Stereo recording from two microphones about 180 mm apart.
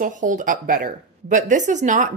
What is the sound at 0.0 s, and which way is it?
A woman's voice, 45° right (ahead or behind).